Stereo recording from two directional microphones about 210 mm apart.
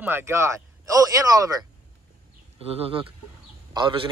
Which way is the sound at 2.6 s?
30° right (ahead or behind).